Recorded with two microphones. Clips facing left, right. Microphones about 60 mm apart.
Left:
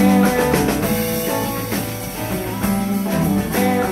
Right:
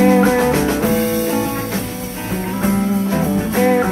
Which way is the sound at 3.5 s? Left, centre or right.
Right.